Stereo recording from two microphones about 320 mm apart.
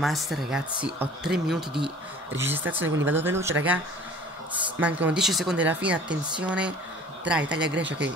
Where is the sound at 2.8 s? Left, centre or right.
Right.